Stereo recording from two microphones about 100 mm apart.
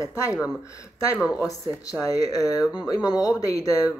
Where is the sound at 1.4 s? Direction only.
35° left (ahead or behind).